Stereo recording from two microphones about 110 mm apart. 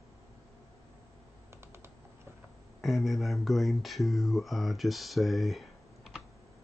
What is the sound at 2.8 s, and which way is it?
Speech, centre (ahead or behind).